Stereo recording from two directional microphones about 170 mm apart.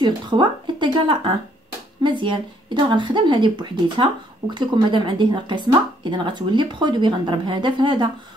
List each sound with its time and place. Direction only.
0.0 s speech: 25° right (ahead or behind)